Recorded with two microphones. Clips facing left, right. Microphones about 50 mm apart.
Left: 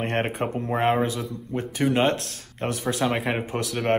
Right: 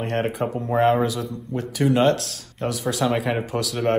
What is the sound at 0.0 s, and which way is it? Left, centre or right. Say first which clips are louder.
Speech: right 2 dB; left.